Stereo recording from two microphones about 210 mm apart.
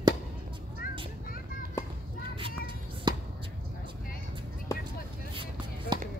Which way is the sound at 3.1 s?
20° right (ahead or behind).